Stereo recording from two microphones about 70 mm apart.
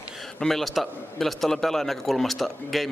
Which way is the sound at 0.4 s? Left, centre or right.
Centre.